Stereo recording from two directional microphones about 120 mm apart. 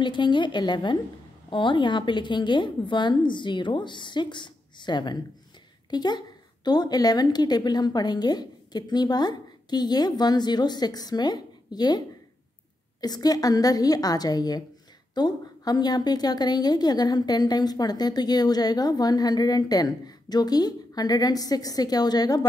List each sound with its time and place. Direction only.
0.0 s a woman's voice: 40° left (ahead or behind)
13.0 s a woman's voice: 35° left (ahead or behind)